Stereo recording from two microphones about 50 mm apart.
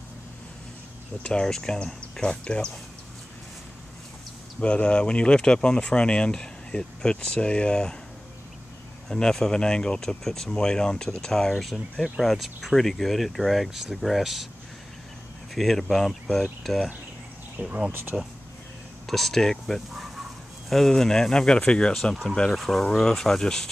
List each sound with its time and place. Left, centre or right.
1.2 s speech: centre
2.4 s speech: left
4.6 s speech: left
9.1 s speech: centre
11.5 s speech: centre
15.5 s speech: centre
17.6 s speech: right
19.0 s speech: centre
22.5 s speech: centre